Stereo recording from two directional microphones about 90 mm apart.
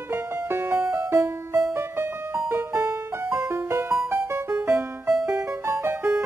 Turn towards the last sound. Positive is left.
turn(degrees=-30)  # may be behind; listen again after turning